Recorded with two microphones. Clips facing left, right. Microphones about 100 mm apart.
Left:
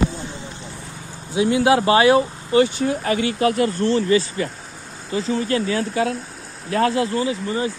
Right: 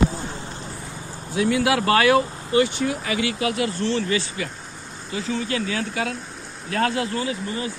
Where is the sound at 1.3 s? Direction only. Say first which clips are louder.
Left 4 dB; 20° left (ahead or behind); by 4.5 s 35° left (ahead or behind).